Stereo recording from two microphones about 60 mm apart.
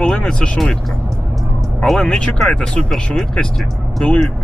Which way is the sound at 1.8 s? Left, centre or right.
Centre.